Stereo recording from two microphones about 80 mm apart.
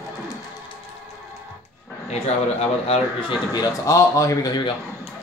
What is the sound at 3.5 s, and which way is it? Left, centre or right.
Speech, left.